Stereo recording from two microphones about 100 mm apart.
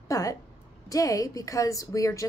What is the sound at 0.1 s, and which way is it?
A woman's voice, 35° left (ahead or behind).